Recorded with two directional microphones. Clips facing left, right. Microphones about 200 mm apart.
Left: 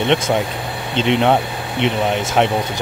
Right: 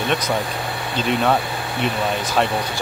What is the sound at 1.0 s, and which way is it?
Speech, 20° left (ahead or behind).